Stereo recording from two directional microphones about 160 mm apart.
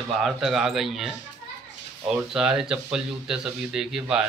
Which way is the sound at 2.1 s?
5° right (ahead or behind).